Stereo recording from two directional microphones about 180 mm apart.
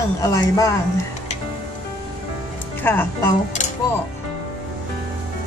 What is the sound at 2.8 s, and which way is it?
Speech, 10° left (ahead or behind).